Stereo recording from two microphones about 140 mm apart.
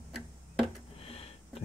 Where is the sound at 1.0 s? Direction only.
45° left (ahead or behind).